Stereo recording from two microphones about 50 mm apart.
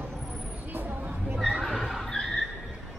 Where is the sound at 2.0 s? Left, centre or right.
Centre.